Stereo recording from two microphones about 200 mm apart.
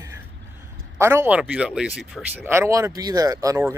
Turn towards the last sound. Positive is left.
turn(degrees=-15)  # may be behind; listen again after turning